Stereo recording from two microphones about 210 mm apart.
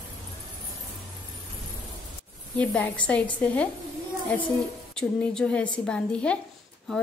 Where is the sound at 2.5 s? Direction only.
5° left (ahead or behind).